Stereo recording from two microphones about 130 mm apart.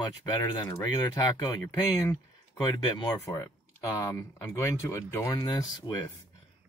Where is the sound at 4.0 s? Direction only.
20° left (ahead or behind).